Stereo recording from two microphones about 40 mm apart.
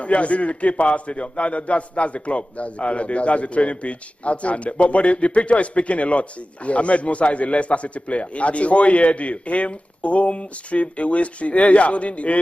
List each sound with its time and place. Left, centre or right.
0.0 s a man's voice: left